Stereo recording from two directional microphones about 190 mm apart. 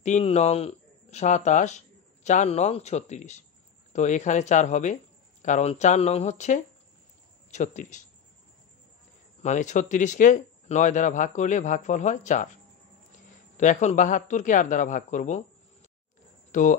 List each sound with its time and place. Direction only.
0.0 s speech: 35° left (ahead or behind)
9.4 s speech: 40° left (ahead or behind)
13.6 s speech: 40° left (ahead or behind)
16.5 s speech: 40° left (ahead or behind)